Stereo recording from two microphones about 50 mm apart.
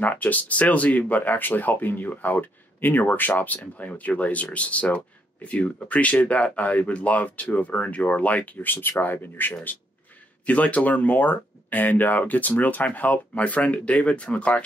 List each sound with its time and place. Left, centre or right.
0.0 s speech: left
10.4 s speech: left